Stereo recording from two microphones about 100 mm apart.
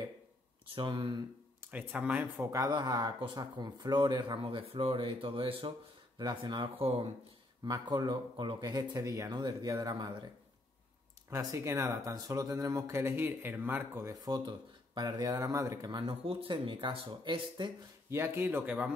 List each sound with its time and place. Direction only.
0.7 s speech: 55° right (ahead or behind)
1.6 s speech: 15° right (ahead or behind)
2.4 s speech: 35° right (ahead or behind); by 5.7 s 60° right (ahead or behind)
6.1 s speech: 45° right (ahead or behind); by 7.1 s 65° right (ahead or behind)
7.6 s speech: 40° right (ahead or behind)
9.3 s speech: 45° right (ahead or behind)
11.2 s speech: 30° right (ahead or behind)
14.2 s speech: 40° right (ahead or behind)
15.9 s speech: 55° right (ahead or behind)
18.1 s speech: 25° right (ahead or behind)